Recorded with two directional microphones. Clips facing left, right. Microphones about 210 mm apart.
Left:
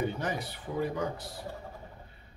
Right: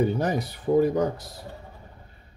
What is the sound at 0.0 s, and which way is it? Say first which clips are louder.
Speech: right 8 dB; 40° right (ahead or behind).